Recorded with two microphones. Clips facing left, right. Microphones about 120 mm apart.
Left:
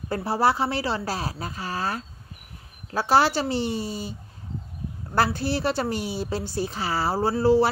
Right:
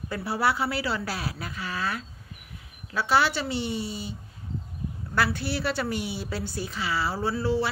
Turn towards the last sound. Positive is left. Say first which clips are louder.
# left 7 dB
turn(degrees=40)  # may be behind; listen again after turning